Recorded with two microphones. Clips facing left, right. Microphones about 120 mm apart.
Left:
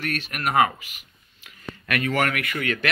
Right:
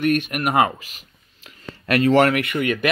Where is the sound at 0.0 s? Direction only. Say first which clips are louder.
Right 8 dB; 20° right (ahead or behind).